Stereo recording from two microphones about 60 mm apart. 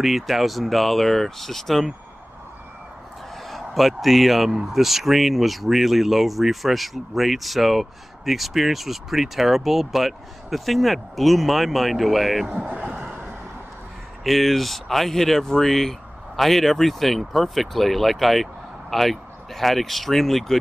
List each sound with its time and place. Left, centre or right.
0.0 s speech: centre
3.4 s a man's voice: centre
12.5 s speech: centre
14.2 s speech: centre